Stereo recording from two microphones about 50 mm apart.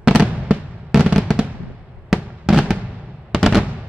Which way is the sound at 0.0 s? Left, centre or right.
Centre.